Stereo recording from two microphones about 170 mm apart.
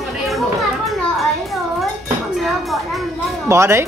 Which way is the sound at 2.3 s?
Centre (ahead or behind).